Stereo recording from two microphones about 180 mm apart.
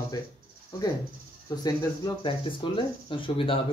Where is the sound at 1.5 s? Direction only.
20° left (ahead or behind).